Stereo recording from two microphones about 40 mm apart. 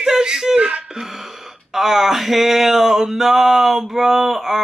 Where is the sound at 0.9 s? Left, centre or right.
Centre.